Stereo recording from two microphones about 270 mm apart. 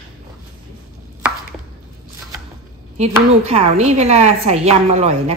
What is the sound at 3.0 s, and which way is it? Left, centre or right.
A woman's voice, right.